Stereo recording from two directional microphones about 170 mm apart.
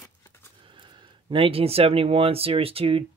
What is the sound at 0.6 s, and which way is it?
Speech, 30° right (ahead or behind).